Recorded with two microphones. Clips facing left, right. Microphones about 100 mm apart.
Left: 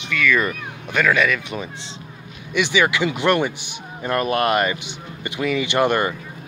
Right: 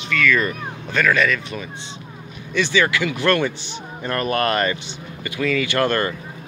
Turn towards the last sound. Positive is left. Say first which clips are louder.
# left 1 dB
turn(degrees=15)  # may be behind; listen again after turning